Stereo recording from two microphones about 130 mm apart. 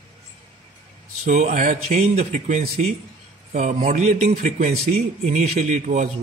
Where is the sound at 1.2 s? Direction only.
60° right (ahead or behind).